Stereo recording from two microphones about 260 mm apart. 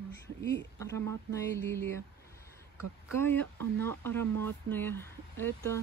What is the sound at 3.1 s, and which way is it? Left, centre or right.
Speech, centre.